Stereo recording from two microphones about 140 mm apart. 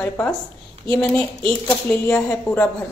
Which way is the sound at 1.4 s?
10° left (ahead or behind).